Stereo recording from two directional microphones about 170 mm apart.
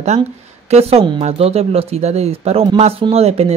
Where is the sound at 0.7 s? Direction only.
35° right (ahead or behind).